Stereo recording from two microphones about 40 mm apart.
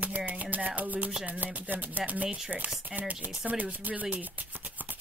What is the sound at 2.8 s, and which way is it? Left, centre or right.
Chopping, right.